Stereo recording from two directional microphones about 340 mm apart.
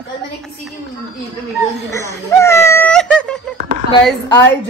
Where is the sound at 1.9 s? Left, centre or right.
Centre.